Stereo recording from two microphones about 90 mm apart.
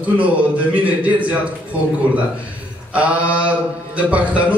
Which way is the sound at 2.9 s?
15° right (ahead or behind).